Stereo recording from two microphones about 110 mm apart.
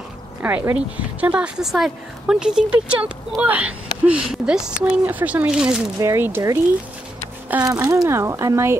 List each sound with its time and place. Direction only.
0.4 s a woman's voice: 15° right (ahead or behind)
5.9 s speech: 25° right (ahead or behind)
7.6 s speech: 30° right (ahead or behind)